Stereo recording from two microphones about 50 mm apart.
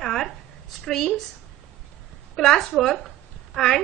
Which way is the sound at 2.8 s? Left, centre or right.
Centre.